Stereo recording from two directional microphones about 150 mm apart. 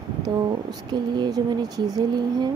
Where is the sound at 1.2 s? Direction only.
25° right (ahead or behind).